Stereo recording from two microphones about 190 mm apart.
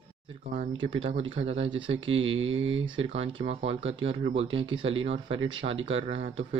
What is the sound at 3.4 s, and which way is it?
Speech, 30° right (ahead or behind).